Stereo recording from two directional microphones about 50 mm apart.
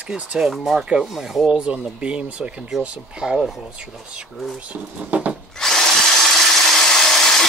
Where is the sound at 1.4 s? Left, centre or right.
Right.